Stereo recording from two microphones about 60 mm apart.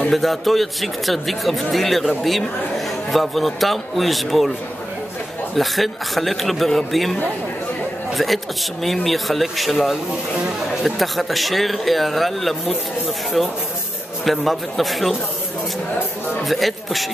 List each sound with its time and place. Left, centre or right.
0.1 s speech: centre
5.6 s speech: centre
8.1 s a sound: centre
8.8 s speech: centre
14.2 s speech: centre
16.4 s speech: centre